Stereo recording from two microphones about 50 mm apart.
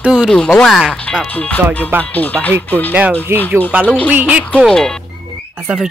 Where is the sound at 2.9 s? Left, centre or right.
Right.